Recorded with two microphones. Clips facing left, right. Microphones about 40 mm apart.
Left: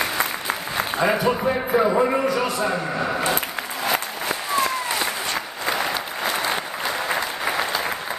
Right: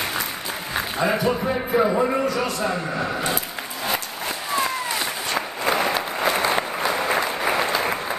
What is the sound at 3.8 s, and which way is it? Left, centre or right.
Applause, centre.